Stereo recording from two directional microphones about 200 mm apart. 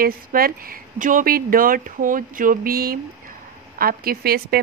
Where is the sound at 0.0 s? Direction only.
45° right (ahead or behind).